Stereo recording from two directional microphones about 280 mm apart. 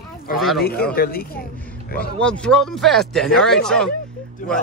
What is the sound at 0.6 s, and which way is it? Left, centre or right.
Speech, left.